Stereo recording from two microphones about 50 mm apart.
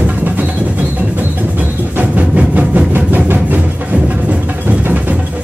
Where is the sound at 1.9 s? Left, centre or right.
Right.